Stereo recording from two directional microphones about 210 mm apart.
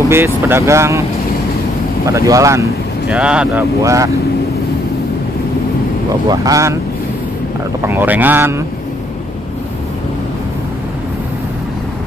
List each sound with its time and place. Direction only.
0.1 s speech: 10° right (ahead or behind)
2.0 s speech: 15° right (ahead or behind)
6.2 s speech: 15° right (ahead or behind)
7.8 s speech: 10° right (ahead or behind)